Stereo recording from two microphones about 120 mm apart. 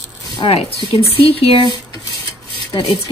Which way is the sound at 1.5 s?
40° right (ahead or behind).